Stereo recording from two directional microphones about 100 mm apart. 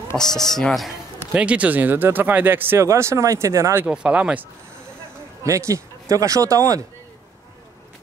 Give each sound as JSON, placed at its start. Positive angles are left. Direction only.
{"t": 0.2, "sound": "speech", "side_deg": 5}
{"t": 1.3, "sound": "speech", "side_deg": -15}
{"t": 3.8, "sound": "speech", "side_deg": -10}
{"t": 5.4, "sound": "speech", "side_deg": -30}